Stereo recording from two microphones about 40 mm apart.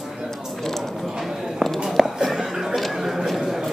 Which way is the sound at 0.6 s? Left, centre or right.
Centre.